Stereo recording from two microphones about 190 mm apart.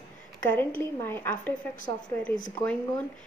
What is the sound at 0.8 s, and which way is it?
Speech, 10° left (ahead or behind).